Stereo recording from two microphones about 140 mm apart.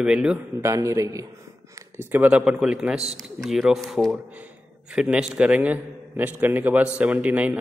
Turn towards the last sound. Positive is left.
turn(degrees=-10)  # may be behind; listen again after turning